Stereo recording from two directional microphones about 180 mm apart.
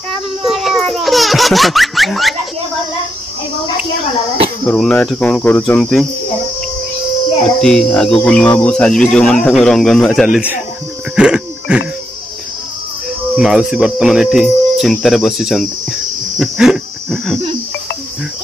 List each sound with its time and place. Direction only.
0.4 s baby laughter: centre (ahead or behind)
4.6 s speech: 5° left (ahead or behind)
7.4 s speech: 5° left (ahead or behind)
11.1 s cricket: 5° right (ahead or behind)
13.4 s speech: centre (ahead or behind)